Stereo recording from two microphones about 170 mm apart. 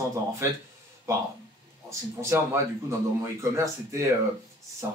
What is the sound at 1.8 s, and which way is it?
Speech, 15° right (ahead or behind).